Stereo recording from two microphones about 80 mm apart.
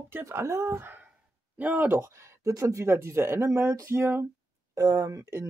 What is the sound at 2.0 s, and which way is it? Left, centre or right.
Speech, right.